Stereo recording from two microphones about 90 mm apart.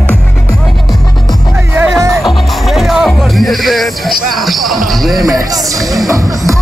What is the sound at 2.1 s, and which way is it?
Music, centre (ahead or behind).